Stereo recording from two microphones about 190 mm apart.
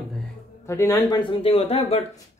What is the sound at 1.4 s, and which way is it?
Speech, 30° left (ahead or behind).